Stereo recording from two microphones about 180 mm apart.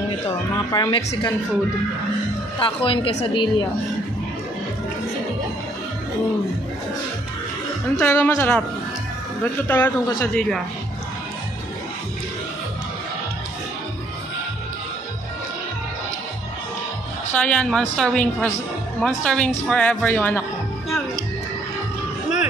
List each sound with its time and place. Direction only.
0.7 s a woman's voice: 20° left (ahead or behind)
2.6 s a woman's voice: 30° left (ahead or behind)
8.0 s speech: 10° left (ahead or behind)
10.0 s a woman's voice: 20° left (ahead or behind)
17.3 s speech: 5° left (ahead or behind)